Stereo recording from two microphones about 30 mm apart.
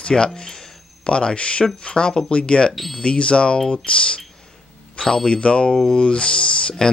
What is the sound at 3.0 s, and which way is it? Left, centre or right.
Speech, left.